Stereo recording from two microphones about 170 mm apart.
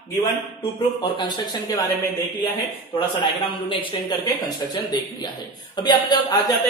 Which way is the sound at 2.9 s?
30° left (ahead or behind).